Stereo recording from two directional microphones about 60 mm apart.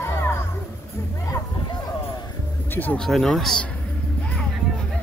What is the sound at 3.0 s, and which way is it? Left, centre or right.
Speech, centre.